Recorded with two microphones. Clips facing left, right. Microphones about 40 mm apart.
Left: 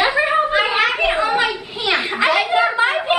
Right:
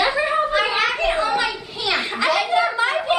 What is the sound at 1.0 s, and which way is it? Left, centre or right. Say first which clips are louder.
A woman's voice: left 3 dB; left.